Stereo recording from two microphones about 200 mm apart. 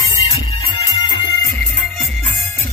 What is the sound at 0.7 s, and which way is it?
Music, 20° left (ahead or behind).